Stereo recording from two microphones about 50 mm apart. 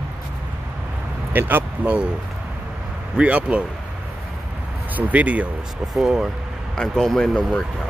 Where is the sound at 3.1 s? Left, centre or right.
Right.